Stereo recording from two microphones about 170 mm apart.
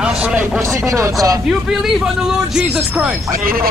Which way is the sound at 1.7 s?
5° right (ahead or behind).